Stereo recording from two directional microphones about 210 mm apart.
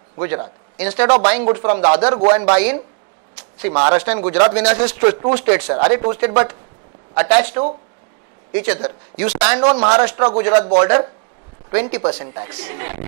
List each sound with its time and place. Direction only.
0.2 s a man's voice: 15° right (ahead or behind)
3.3 s a sound: 10° right (ahead or behind)
3.8 s speech: 10° right (ahead or behind)
9.7 s speech: 30° right (ahead or behind)
10.0 s speech: 10° right (ahead or behind)